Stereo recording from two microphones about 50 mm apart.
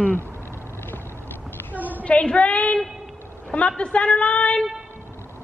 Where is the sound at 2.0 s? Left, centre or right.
Left.